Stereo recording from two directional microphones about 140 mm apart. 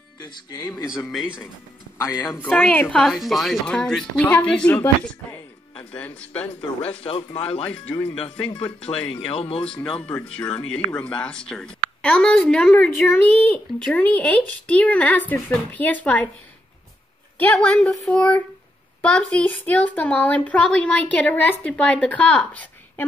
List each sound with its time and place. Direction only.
0.2 s speech: 30° left (ahead or behind)
1.1 s speech: 10° right (ahead or behind)
2.4 s a woman's voice: 10° left (ahead or behind)
5.9 s speech: 10° left (ahead or behind)
6.9 s speech: 40° left (ahead or behind)
7.6 s speech: 10° left (ahead or behind)
8.5 s speech: 35° left (ahead or behind)
9.8 s speech: 10° left (ahead or behind)
17.4 s speech: 10° left (ahead or behind)